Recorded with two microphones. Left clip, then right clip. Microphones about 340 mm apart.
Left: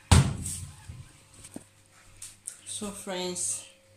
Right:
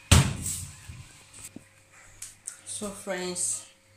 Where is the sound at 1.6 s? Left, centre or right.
Left.